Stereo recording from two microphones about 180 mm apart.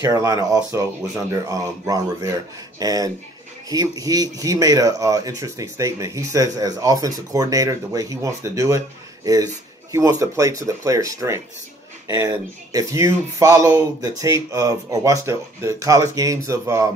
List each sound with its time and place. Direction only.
0.0 s speech: 20° right (ahead or behind)